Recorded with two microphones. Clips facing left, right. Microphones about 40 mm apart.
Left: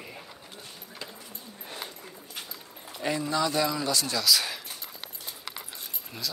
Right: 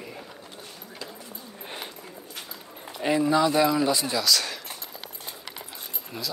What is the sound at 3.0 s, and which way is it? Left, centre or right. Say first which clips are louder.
Speech: right 6 dB; centre.